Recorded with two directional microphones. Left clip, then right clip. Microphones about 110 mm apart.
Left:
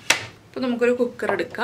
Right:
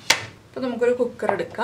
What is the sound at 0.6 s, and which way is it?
A woman's voice, 20° left (ahead or behind).